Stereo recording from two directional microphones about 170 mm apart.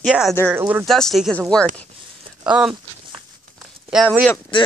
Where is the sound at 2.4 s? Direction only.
5° right (ahead or behind).